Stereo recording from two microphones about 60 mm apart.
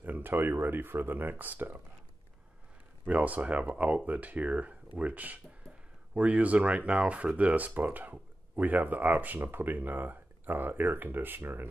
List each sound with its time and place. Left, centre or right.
0.0 s speech: right
3.1 s speech: right